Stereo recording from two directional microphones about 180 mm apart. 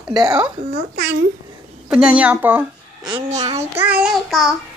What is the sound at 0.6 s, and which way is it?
Speech, 50° right (ahead or behind).